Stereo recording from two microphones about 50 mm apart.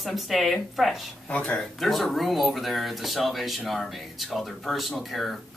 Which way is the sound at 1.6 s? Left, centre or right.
Centre.